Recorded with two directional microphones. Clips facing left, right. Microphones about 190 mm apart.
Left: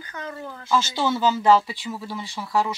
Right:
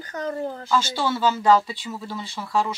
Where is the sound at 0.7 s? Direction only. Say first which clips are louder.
Left 2 dB; 15° left (ahead or behind).